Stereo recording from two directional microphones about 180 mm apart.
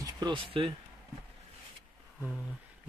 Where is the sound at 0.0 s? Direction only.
25° right (ahead or behind).